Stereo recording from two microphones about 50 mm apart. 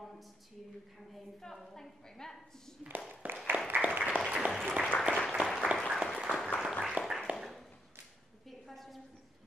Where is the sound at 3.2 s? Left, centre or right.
Right.